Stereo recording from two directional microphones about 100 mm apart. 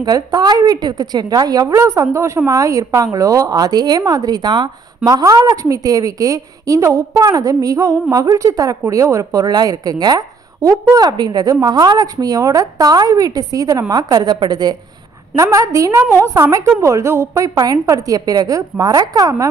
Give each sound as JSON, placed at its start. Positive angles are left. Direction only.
{"t": 0.0, "sound": "a woman's voice", "side_deg": -40}
{"t": 15.3, "sound": "a woman's voice", "side_deg": -35}